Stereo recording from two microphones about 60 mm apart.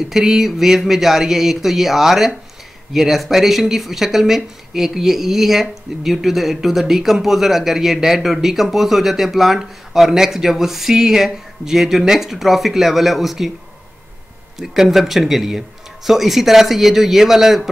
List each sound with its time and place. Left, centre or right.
0.1 s speech: centre
14.6 s speech: centre